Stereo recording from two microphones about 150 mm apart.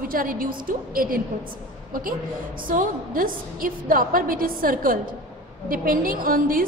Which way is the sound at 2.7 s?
65° right (ahead or behind).